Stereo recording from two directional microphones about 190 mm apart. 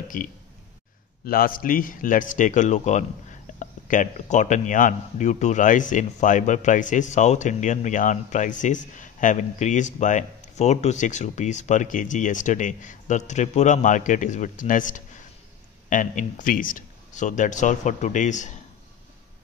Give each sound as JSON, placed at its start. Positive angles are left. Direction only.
{"t": 0.1, "sound": "speech", "side_deg": 45}